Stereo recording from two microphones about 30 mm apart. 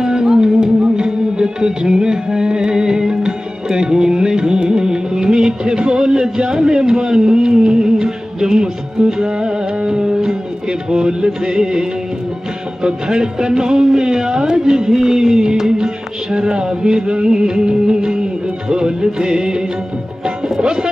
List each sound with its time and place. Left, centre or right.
0.0 s music: right